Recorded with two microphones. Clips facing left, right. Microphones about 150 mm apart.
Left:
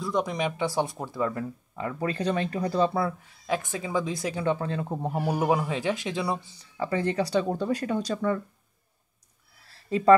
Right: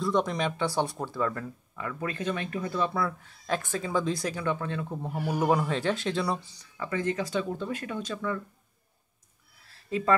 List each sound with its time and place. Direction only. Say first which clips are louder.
0.0 s speech: right 1 dB; 10° left (ahead or behind); by 3.2 s 30° left (ahead or behind)
3.4 s speech: left 1 dB; 15° left (ahead or behind); by 5.4 s 40° left (ahead or behind)
5.4 s speech: right 2 dB; 20° left (ahead or behind)
6.6 s speech: left 6 dB; 30° left (ahead or behind)
9.8 s speech: left 7 dB; 35° left (ahead or behind)